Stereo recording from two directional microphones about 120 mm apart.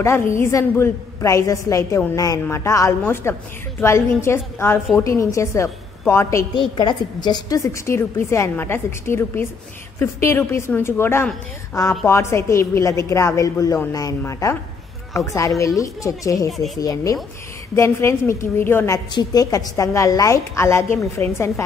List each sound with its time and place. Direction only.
0.0 s a woman's voice: 20° left (ahead or behind)
6.8 s a woman's voice: 35° left (ahead or behind); by 18.9 s 20° left (ahead or behind)
19.1 s a woman's voice: 30° left (ahead or behind)